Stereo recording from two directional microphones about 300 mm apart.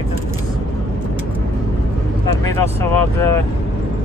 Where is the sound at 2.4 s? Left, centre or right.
Centre.